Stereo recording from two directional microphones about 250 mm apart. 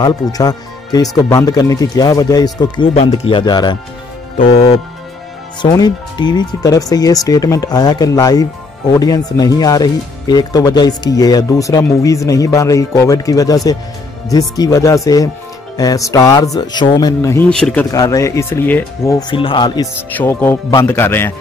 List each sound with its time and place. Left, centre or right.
0.0 s speech: centre